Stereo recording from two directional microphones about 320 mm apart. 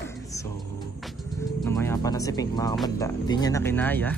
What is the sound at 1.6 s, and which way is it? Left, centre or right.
Speech, centre.